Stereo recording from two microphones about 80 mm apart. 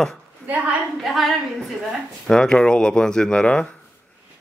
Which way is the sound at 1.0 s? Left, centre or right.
Centre.